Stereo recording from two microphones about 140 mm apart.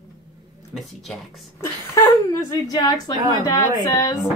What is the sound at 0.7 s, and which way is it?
Speech, centre (ahead or behind).